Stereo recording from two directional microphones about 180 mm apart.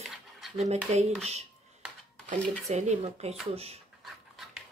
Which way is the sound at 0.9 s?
35° right (ahead or behind).